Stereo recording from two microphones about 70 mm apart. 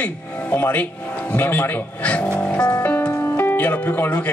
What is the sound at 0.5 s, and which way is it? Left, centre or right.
Speech, left.